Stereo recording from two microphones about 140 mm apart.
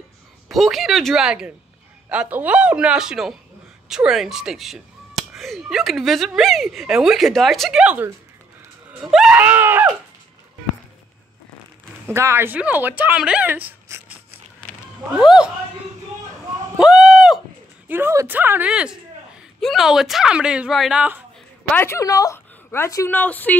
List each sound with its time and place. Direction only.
0.5 s speech: centre (ahead or behind)
12.1 s speech: 20° right (ahead or behind)
15.1 s speech: 5° right (ahead or behind)
16.7 s a sound: 5° right (ahead or behind)
17.8 s speech: 15° right (ahead or behind)
21.7 s a woman's voice: 20° left (ahead or behind)